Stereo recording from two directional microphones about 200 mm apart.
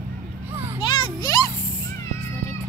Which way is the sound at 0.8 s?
25° left (ahead or behind).